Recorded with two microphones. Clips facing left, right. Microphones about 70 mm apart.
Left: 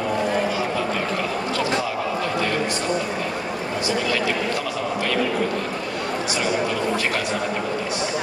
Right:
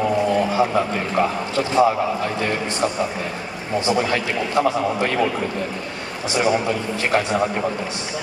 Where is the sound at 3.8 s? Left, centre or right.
Right.